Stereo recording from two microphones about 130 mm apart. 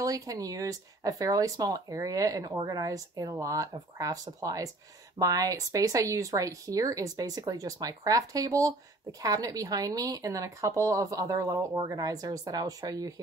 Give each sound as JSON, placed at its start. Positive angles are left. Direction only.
{"t": 0.0, "sound": "speech", "side_deg": -25}